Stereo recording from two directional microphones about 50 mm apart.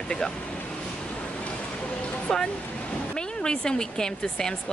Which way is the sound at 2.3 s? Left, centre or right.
Centre.